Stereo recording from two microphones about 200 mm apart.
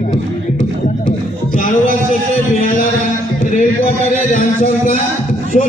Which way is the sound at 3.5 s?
35° left (ahead or behind).